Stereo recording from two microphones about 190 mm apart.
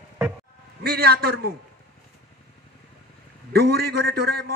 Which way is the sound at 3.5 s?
55° right (ahead or behind).